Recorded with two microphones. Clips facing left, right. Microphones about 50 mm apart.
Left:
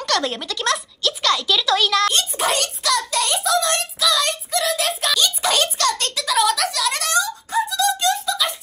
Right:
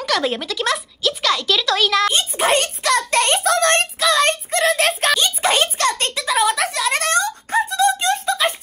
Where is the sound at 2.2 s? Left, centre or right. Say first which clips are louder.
Right 3 dB; right.